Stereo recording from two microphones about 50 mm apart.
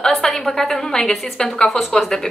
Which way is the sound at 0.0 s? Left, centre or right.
Centre.